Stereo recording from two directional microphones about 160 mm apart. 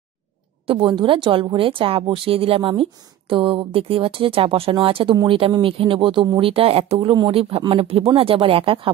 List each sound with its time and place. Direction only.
0.7 s a woman's voice: 35° right (ahead or behind)